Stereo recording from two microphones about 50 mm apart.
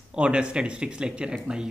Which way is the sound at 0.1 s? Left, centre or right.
Right.